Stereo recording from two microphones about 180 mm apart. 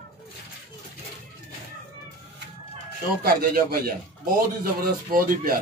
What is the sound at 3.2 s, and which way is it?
Speech, 55° right (ahead or behind).